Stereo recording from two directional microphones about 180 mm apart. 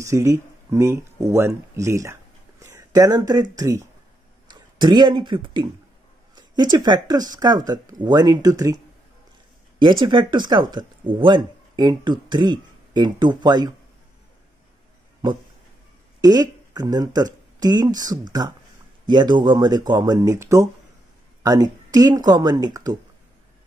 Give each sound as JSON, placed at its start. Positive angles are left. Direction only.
{"t": 0.0, "sound": "speech", "side_deg": -15}
{"t": 2.6, "sound": "a sound", "side_deg": -15}
{"t": 3.5, "sound": "speech", "side_deg": -15}
{"t": 9.8, "sound": "speech", "side_deg": -25}
{"t": 16.2, "sound": "speech", "side_deg": -20}